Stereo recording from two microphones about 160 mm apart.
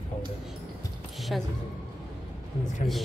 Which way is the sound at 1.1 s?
Centre (ahead or behind).